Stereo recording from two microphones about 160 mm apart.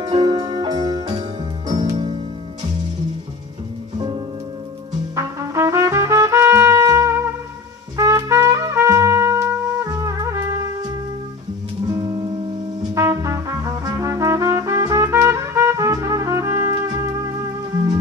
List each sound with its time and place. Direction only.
0.0 s music: 30° right (ahead or behind)
5.1 s trumpet: 20° right (ahead or behind)
11.8 s music: 25° right (ahead or behind)
12.9 s brass instrument: 20° right (ahead or behind)